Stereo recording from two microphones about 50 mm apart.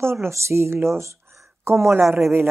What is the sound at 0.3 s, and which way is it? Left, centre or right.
Speech, right.